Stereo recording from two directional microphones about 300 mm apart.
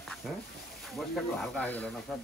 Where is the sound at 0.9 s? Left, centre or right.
Centre.